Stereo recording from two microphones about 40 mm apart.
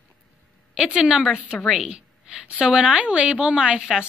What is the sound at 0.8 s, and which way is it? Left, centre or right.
Speech, centre.